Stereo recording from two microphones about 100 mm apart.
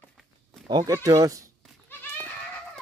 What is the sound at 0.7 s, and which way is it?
Mantra, 40° right (ahead or behind).